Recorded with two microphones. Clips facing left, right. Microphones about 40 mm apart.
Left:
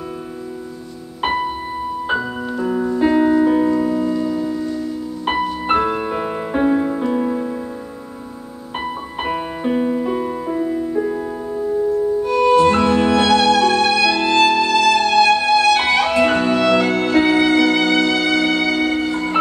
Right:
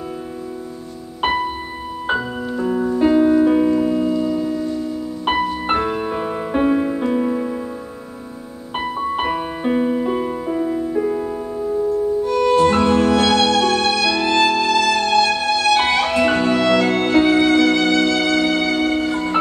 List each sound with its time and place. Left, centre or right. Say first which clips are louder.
2.0 s music: right 3 dB; centre
5.4 s music: left 2 dB; centre
6.6 s music: left 1 dB; centre
8.7 s music: right 4 dB; centre
12.3 s music: left 2 dB; centre